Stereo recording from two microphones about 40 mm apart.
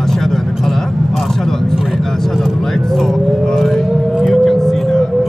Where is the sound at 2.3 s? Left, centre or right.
Centre.